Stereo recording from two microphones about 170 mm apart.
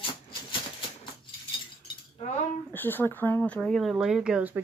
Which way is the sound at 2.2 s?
45° left (ahead or behind).